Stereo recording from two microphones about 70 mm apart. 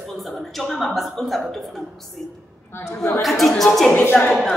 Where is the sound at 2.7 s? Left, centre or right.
Left.